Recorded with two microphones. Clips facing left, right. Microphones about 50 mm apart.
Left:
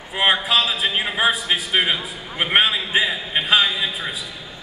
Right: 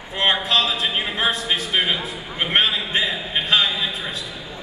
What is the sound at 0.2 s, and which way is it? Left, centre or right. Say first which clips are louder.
A man's voice: left 1 dB; centre.